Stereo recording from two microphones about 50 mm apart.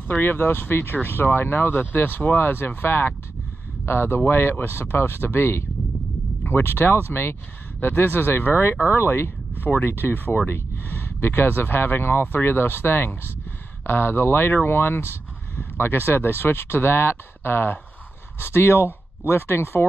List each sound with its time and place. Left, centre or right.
0.2 s speech: left
8.9 s speech: left